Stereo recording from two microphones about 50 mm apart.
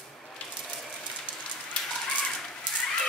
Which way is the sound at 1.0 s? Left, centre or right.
Left.